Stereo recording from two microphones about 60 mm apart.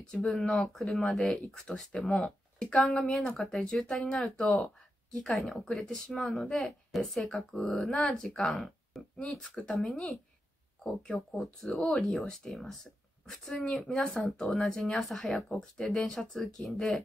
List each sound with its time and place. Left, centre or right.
0.0 s speech: centre
0.3 s speech: centre
8.0 s speech: centre
8.3 s speech: centre